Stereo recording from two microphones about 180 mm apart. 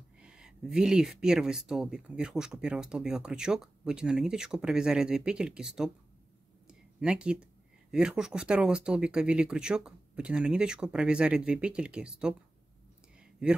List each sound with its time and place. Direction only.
0.2 s speech: 5° right (ahead or behind)
6.7 s a sound: 5° right (ahead or behind)
7.9 s speech: 5° right (ahead or behind)